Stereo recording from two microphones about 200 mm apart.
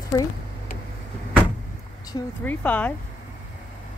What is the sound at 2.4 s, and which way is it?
Speech, 5° left (ahead or behind).